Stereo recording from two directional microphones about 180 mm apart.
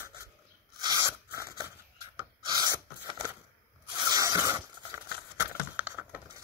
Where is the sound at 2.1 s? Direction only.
20° right (ahead or behind).